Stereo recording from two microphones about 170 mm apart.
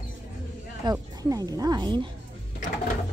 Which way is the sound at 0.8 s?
20° right (ahead or behind).